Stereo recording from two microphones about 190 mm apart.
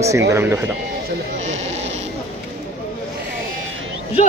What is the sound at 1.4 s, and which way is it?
Sheep, 35° right (ahead or behind).